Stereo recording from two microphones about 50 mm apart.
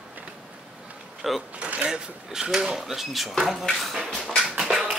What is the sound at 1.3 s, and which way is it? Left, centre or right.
Speech, centre.